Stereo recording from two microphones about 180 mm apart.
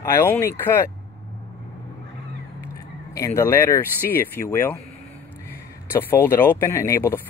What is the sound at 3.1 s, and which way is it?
Speech, 15° left (ahead or behind).